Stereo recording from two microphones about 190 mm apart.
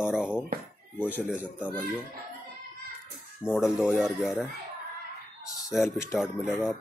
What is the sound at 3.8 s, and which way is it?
Speech, 5° right (ahead or behind).